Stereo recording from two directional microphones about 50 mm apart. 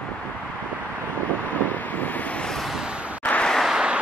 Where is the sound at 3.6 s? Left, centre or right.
Centre.